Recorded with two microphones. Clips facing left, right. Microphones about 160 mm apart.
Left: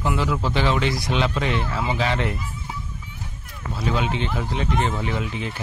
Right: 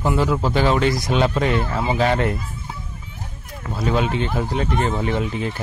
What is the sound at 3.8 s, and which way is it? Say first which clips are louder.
Speech: right 4 dB; 45° right (ahead or behind).